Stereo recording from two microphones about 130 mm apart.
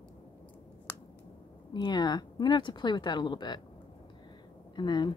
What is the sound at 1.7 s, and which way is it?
A woman's voice, 35° left (ahead or behind).